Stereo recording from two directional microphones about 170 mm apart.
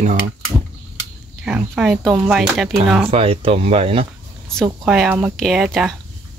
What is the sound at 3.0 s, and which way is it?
Speech, 35° right (ahead or behind).